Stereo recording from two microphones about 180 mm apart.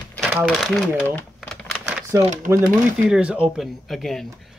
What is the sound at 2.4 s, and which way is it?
A man's voice, 15° right (ahead or behind).